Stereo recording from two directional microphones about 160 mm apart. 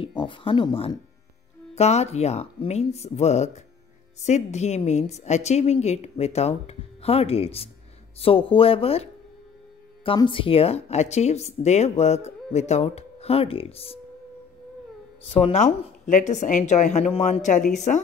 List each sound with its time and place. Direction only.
0.0 s a woman's voice: 30° left (ahead or behind)
15.3 s a woman's voice: 40° left (ahead or behind)